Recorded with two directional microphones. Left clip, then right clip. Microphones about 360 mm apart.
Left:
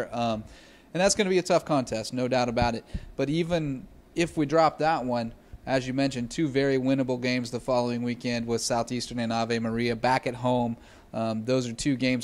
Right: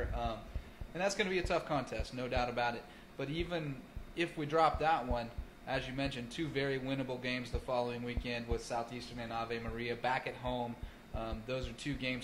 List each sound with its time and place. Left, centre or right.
0.1 s a man's voice: left